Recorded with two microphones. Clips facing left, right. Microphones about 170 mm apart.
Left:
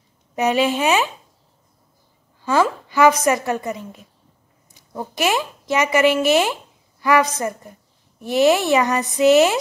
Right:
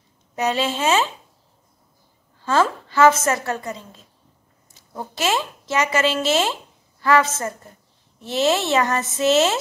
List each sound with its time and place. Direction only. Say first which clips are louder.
0.4 s a child's voice: left 4 dB; 15° left (ahead or behind)
2.4 s a child's voice: left 1 dB; 15° left (ahead or behind)
5.1 s a child's voice: left 2 dB; 15° left (ahead or behind)